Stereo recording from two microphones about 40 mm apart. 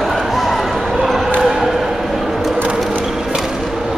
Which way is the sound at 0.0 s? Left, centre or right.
Centre.